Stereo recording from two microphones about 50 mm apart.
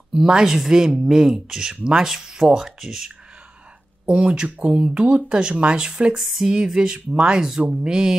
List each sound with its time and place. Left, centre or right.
0.1 s speech: centre
4.0 s speech: right
6.1 s a sound: centre
6.5 s speech: centre